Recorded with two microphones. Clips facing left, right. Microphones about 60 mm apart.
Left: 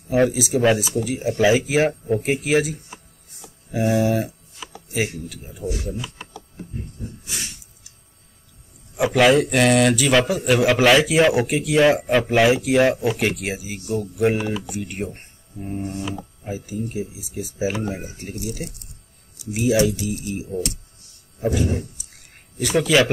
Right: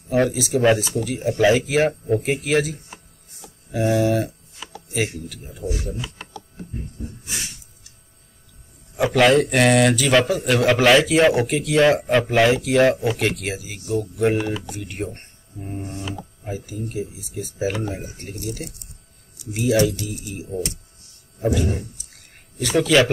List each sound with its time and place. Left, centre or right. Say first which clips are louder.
0.1 s speech: left 1 dB; centre
3.8 s speech: even; centre
5.9 s a sound: left 1 dB; centre
8.9 s a man's voice: even; centre
15.1 s a sound: left 2 dB; centre
15.9 s speech: left 2 dB; centre
19.8 s speech: left 1 dB; centre
22.6 s a man's voice: right 1 dB; centre